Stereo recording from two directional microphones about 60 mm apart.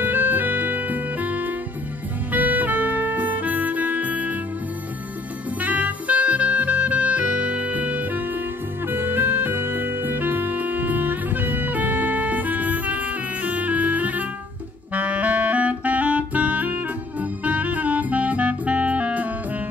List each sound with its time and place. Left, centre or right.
0.0 s music: right
5.6 s music: right
8.8 s music: right
15.0 s clarinet: right
17.2 s music: right